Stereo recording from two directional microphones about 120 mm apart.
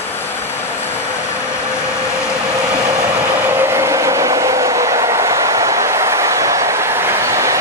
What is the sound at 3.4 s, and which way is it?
Train, 20° right (ahead or behind).